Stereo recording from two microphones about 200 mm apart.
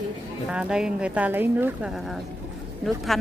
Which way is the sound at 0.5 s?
5° right (ahead or behind).